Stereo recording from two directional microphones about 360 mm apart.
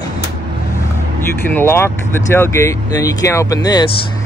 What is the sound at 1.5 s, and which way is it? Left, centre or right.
Speech, centre.